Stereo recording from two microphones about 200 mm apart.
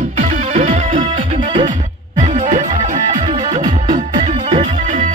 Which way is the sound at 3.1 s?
40° right (ahead or behind).